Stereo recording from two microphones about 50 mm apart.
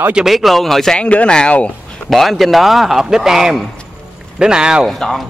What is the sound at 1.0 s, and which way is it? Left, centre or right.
Speech, left.